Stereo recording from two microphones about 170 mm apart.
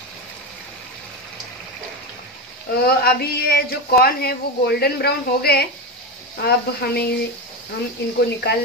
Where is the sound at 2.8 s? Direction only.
65° left (ahead or behind).